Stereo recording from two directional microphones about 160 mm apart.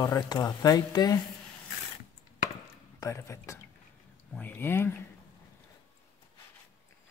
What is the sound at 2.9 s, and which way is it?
Speech, 15° left (ahead or behind).